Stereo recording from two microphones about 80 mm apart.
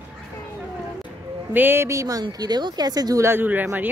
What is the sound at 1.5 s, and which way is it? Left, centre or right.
Speech, right.